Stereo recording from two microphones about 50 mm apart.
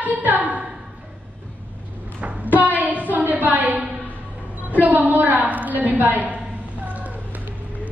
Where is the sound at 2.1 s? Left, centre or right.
Right.